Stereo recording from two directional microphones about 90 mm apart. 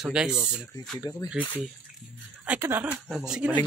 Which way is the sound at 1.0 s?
55° left (ahead or behind).